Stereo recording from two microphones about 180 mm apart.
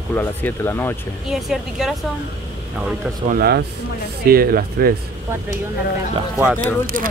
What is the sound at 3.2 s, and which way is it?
Speech, 55° right (ahead or behind).